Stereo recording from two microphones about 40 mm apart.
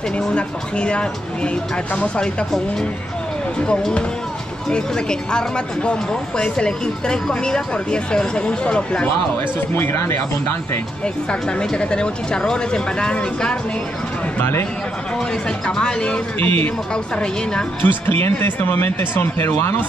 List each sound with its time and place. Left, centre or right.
0.3 s speech: left
4.6 s speech: left
9.8 s speech: left
11.4 s speech: left
14.4 s speech: left
15.6 s speech: left
16.3 s speech: left
16.9 s speech: left
17.8 s speech: left